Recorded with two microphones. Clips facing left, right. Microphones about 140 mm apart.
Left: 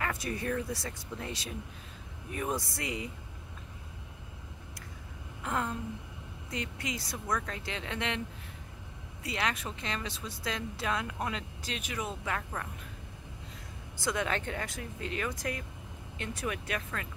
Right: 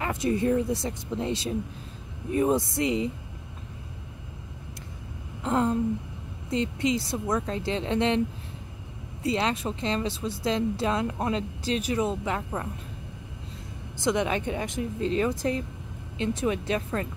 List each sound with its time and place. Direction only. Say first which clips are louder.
0.0 s speech: right 9 dB; 25° right (ahead or behind)
5.4 s a sound: right 9 dB; 30° right (ahead or behind)
6.5 s speech: right 12 dB; 25° right (ahead or behind)
9.2 s speech: right 8 dB; 30° right (ahead or behind)
13.9 s speech: right 7 dB; 20° right (ahead or behind)